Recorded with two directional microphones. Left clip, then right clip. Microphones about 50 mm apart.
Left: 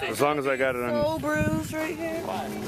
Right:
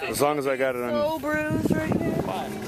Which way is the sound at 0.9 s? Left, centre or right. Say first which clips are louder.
Right 1 dB; left.